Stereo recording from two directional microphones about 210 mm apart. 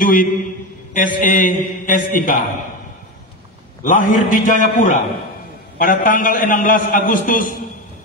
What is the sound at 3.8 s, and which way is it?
Mantra, 40° left (ahead or behind).